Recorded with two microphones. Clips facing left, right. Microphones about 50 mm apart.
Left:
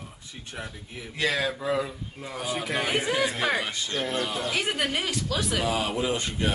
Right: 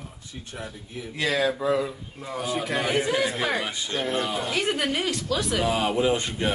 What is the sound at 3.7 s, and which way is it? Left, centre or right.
Speech, centre.